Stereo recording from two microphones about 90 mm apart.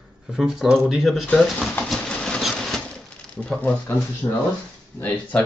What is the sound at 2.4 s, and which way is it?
Sewing machine, 5° left (ahead or behind).